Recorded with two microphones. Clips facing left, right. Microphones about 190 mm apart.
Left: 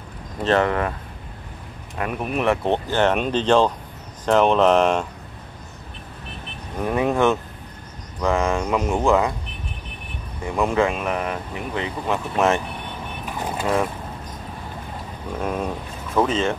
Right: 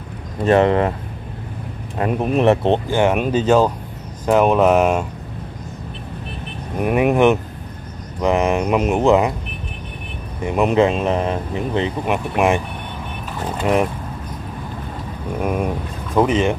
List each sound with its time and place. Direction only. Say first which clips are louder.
0.4 s speech: right 5 dB; 15° right (ahead or behind)
0.7 s speech: right 6 dB; 25° right (ahead or behind)
2.0 s speech: right 6 dB; 30° right (ahead or behind)
2.9 s speech: right 3 dB; 10° right (ahead or behind)
6.8 s speech: right 5 dB; 15° right (ahead or behind)
10.4 s speech: right 5 dB; 20° right (ahead or behind)
12.4 s speech: right 2 dB; 15° right (ahead or behind)
15.4 s speech: right 4 dB; 15° right (ahead or behind)